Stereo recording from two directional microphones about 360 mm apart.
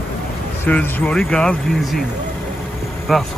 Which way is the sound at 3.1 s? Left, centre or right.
Centre.